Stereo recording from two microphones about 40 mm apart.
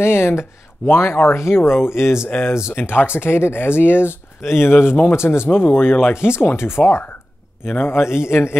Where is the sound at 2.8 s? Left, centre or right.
Left.